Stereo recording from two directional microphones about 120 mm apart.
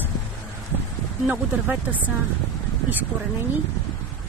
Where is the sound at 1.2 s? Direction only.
15° right (ahead or behind).